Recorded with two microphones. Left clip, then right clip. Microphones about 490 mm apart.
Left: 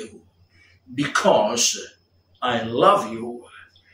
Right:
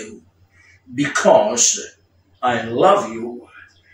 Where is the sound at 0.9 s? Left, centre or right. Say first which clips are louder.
Right 5 dB; left.